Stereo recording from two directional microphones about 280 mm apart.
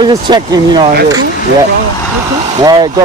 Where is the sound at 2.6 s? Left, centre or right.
Centre.